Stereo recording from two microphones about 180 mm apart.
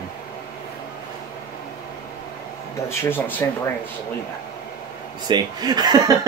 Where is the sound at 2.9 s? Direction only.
15° left (ahead or behind).